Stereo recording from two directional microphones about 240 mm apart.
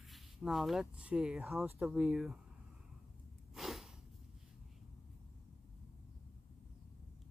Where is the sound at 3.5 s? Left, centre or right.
Centre.